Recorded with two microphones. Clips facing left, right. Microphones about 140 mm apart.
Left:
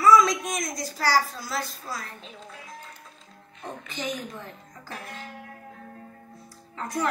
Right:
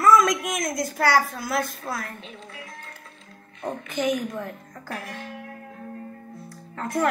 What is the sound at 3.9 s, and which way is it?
A woman's voice, 55° right (ahead or behind).